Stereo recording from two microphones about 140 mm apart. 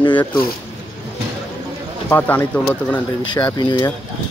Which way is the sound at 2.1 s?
15° left (ahead or behind).